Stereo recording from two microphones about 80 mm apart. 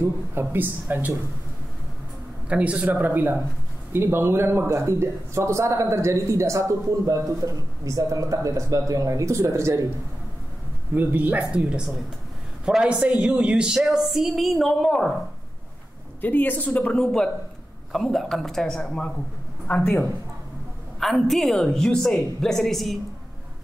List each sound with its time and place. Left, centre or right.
0.0 s speech: right
2.5 s speech: centre; by 9.8 s right
11.0 s a woman's voice: right; by 15.1 s centre
16.2 s speech: left
17.0 s a woman's voice: centre
19.7 s speech: centre
21.0 s a woman's voice: centre